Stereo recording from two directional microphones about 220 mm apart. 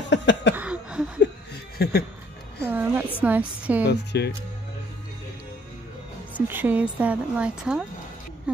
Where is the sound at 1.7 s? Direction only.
45° left (ahead or behind).